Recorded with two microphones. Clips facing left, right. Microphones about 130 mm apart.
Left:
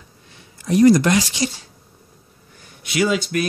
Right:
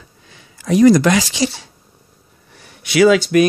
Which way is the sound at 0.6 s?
90° right.